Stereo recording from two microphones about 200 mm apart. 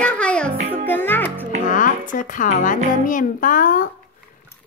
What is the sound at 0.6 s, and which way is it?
Music, 35° right (ahead or behind).